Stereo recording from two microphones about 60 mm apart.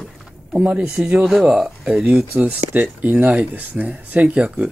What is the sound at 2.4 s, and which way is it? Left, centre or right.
Speech, right.